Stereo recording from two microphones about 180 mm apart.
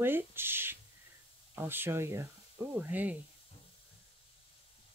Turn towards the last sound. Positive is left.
turn(degrees=-10)  # may be behind; listen again after turning